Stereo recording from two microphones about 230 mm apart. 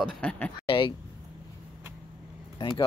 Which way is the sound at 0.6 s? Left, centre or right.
Left.